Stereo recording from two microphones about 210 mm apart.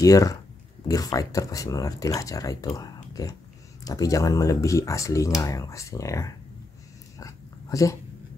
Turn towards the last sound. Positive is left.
turn(degrees=15)  # may be behind; listen again after turning